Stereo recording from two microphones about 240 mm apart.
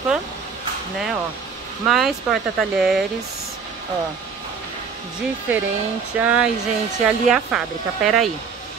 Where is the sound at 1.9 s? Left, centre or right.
Centre.